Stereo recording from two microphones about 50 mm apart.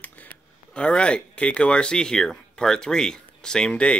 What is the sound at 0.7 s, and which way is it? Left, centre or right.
Speech, left.